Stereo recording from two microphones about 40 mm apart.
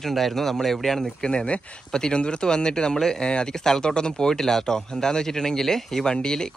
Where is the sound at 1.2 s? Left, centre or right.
Left.